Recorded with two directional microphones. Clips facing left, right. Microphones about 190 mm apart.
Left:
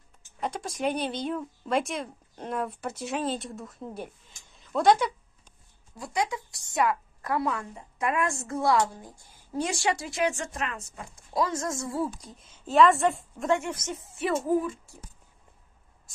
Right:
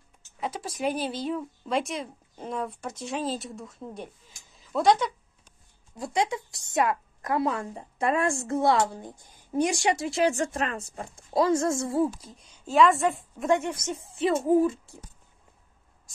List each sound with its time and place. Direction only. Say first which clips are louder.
0.4 s speech: even; 5° right (ahead or behind)
5.9 s a woman's voice: right 3 dB; 25° right (ahead or behind)
12.2 s speech: left 1 dB; centre (ahead or behind)
13.5 s a woman's voice: right 2 dB; 15° right (ahead or behind)